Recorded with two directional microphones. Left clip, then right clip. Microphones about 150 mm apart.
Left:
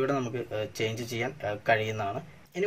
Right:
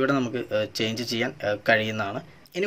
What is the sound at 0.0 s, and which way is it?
Speech, 35° right (ahead or behind).